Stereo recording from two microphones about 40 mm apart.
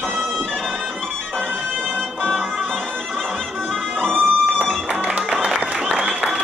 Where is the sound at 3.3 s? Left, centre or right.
Centre.